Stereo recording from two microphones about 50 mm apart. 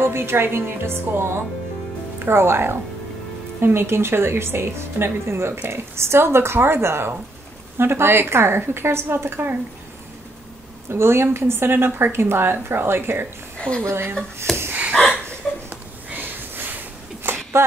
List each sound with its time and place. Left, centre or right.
0.0 s speech: right
10.9 s a woman's voice: right
13.6 s a woman's voice: left
13.8 s a woman's voice: right
14.5 s a sound: centre
15.7 s a sound: right